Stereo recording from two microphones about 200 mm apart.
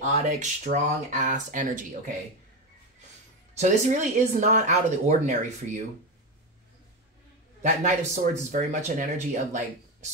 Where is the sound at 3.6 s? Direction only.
35° right (ahead or behind).